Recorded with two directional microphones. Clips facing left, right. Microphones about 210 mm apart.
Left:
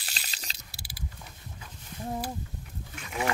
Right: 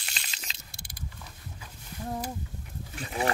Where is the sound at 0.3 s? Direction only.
35° left (ahead or behind).